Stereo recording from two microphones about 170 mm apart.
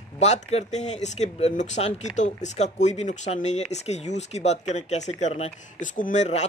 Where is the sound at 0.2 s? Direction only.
40° left (ahead or behind).